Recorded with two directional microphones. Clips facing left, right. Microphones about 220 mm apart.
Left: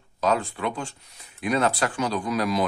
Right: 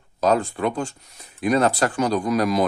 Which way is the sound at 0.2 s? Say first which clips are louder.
Right 4 dB; 40° right (ahead or behind).